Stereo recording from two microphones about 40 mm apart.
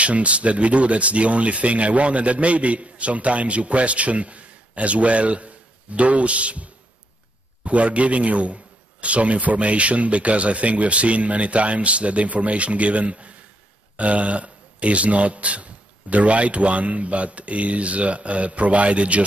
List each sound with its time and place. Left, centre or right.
0.0 s speech: right